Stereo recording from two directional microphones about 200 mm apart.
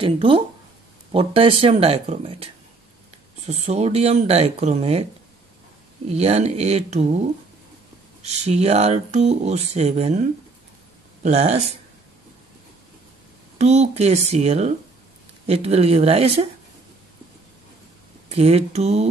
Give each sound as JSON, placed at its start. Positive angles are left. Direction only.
{"t": 0.0, "sound": "speech", "side_deg": -25}
{"t": 6.0, "sound": "speech", "side_deg": -30}
{"t": 11.2, "sound": "speech", "side_deg": -30}
{"t": 13.6, "sound": "speech", "side_deg": -35}
{"t": 18.3, "sound": "speech", "side_deg": -30}